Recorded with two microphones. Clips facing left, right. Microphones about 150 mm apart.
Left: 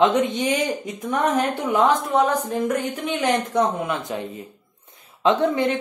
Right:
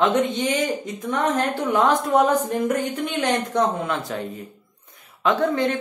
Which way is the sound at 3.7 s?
15° left (ahead or behind).